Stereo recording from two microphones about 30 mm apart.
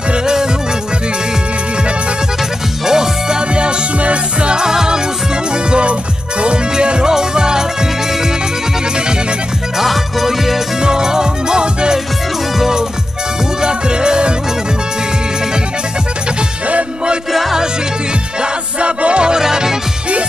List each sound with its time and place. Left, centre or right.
2.8 s music: centre
3.5 s music: right
4.6 s music: right
9.8 s music: centre
10.8 s music: right
13.6 s music: right
17.3 s music: centre
18.4 s music: right
19.3 s music: right